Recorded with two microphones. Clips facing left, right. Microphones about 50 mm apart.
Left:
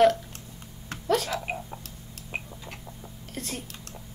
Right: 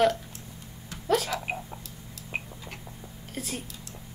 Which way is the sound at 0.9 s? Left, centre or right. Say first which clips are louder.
Left 5 dB; left.